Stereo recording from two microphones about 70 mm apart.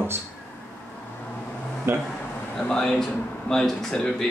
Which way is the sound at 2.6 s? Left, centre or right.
Centre.